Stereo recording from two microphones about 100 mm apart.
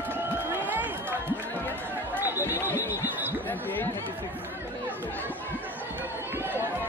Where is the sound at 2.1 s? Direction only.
20° right (ahead or behind).